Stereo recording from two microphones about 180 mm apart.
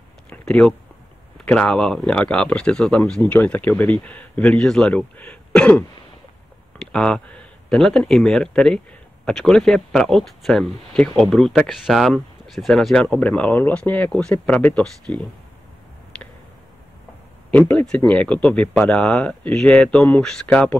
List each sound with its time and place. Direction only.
0.3 s speech: 5° left (ahead or behind)
6.9 s speech: 5° left (ahead or behind)
17.5 s speech: 5° left (ahead or behind)